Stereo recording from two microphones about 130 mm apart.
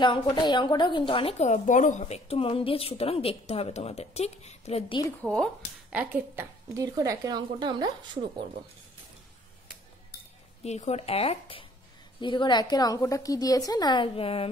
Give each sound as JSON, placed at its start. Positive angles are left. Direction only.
{"t": 0.0, "sound": "a woman's voice", "side_deg": 35}
{"t": 1.4, "sound": "a woman's voice", "side_deg": 65}
{"t": 5.2, "sound": "speech", "side_deg": 5}
{"t": 5.9, "sound": "speech", "side_deg": -10}
{"t": 6.7, "sound": "speech", "side_deg": -25}
{"t": 10.6, "sound": "a woman's voice", "side_deg": 60}